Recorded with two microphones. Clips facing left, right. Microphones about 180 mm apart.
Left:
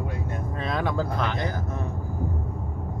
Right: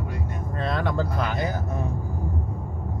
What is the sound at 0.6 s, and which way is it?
Speech, centre (ahead or behind).